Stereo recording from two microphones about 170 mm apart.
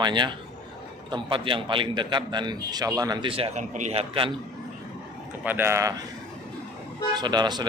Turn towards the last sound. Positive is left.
turn(degrees=-25)  # may be behind; listen again after turning